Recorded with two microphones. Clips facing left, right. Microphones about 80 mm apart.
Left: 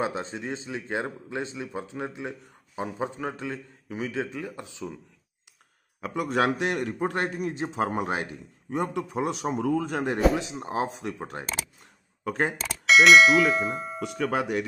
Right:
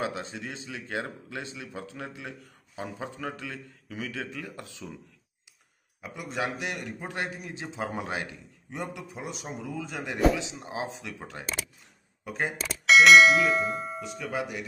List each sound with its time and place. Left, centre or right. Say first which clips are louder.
0.0 s a man's voice: left 3 dB; left
5.9 s a man's voice: left 8 dB; left
6.7 s speech: left 7 dB; left
7.0 s a man's voice: left 7 dB; left
8.8 s a man's voice: left 9 dB; left
10.5 s speech: left 6 dB; left
12.3 s a man's voice: left 5 dB; left
12.5 s bell: right 1 dB; centre
14.0 s a man's voice: left 10 dB; left